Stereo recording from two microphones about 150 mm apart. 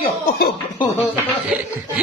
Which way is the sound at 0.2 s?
80° left.